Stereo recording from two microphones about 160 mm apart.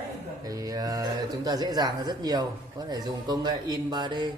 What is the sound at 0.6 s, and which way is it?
A man's voice, 25° right (ahead or behind).